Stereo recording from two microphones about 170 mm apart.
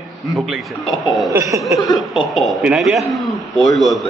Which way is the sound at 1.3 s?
20° right (ahead or behind).